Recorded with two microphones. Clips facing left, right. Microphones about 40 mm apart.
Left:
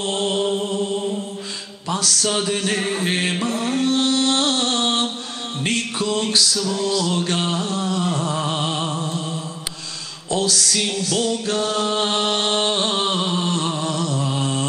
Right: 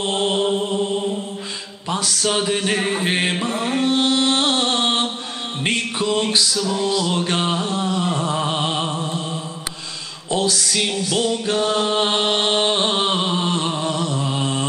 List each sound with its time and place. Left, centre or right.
0.0 s mantra: centre
1.9 s music: centre